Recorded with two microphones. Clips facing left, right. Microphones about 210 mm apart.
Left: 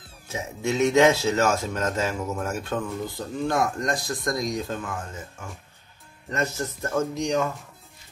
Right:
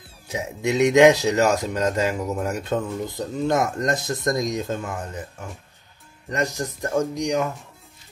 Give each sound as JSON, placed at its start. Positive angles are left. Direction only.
{"t": 0.3, "sound": "speech", "side_deg": -15}
{"t": 6.3, "sound": "speech", "side_deg": -15}